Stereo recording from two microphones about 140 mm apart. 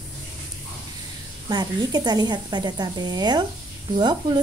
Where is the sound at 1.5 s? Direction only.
30° right (ahead or behind).